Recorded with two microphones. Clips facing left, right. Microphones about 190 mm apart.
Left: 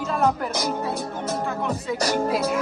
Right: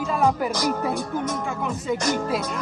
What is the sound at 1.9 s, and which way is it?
Music, 35° left (ahead or behind).